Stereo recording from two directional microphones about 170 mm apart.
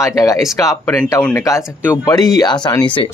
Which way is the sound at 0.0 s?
20° left (ahead or behind).